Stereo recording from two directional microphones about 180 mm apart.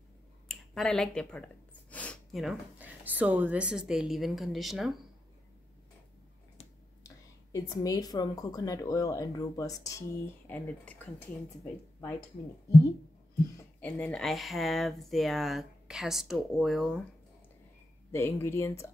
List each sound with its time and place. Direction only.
0.5 s speech: centre (ahead or behind)
7.5 s speech: 20° left (ahead or behind)
13.7 s speech: 10° left (ahead or behind)
18.1 s speech: 15° left (ahead or behind)